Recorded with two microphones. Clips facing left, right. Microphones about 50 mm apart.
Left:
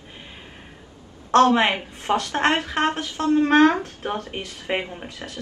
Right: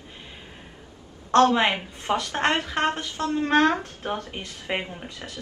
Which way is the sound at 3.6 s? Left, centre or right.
Left.